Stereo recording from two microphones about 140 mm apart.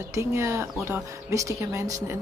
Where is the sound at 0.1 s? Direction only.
20° right (ahead or behind).